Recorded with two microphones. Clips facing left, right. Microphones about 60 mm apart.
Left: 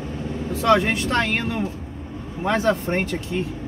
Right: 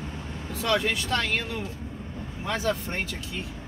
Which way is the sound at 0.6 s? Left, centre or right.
Left.